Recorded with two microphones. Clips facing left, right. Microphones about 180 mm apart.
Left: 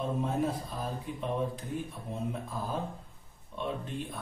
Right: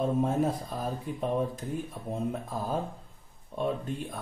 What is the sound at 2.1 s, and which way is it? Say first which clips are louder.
Speech: right 5 dB; 45° right (ahead or behind).